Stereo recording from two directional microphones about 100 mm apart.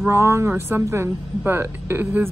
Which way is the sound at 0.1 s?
25° right (ahead or behind).